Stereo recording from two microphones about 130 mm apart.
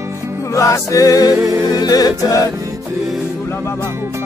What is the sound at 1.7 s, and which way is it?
A capella, 30° left (ahead or behind).